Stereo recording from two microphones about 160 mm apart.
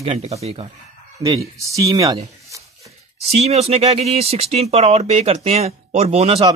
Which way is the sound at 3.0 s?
40° right (ahead or behind).